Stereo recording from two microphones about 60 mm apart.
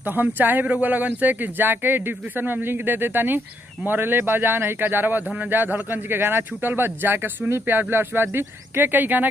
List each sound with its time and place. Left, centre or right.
0.0 s speech: right